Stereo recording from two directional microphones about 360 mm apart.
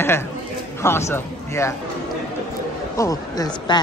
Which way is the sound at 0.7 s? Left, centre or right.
Centre.